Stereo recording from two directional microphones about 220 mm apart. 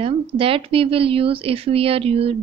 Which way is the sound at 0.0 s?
25° right (ahead or behind).